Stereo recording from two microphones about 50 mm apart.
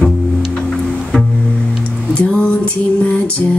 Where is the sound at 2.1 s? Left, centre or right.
Left.